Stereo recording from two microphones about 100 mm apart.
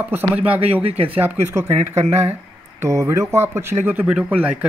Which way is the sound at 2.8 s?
30° right (ahead or behind).